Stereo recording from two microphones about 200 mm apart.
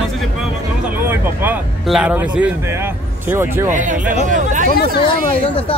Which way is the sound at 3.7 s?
40° right (ahead or behind).